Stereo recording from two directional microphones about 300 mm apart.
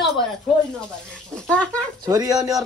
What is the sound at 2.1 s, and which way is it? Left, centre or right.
Speech, centre.